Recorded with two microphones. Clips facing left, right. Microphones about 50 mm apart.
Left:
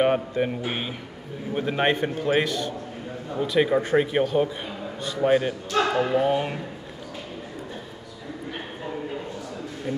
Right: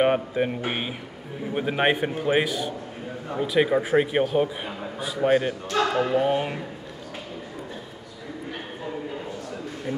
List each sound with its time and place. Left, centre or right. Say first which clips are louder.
0.0 s a man's voice: even; centre